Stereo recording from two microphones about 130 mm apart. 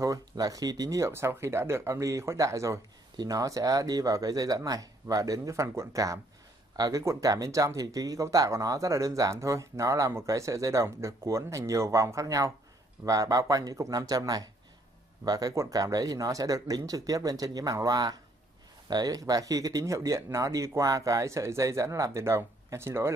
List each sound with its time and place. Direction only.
0.0 s speech: 25° right (ahead or behind)